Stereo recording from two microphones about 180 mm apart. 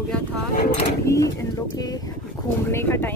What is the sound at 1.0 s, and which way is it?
Speech, 15° left (ahead or behind).